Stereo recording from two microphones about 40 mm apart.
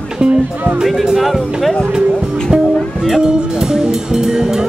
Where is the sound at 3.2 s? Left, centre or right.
Centre.